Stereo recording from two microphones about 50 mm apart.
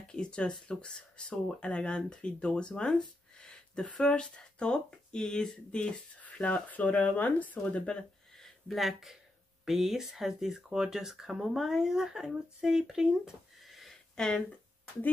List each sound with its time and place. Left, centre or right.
0.1 s speech: centre
8.6 s speech: centre
14.1 s speech: centre